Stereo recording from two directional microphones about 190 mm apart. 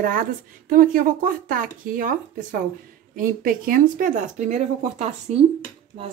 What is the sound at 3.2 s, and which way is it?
Speech, 50° right (ahead or behind).